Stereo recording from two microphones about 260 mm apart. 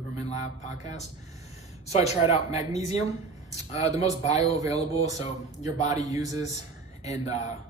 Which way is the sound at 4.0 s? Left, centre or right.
Left.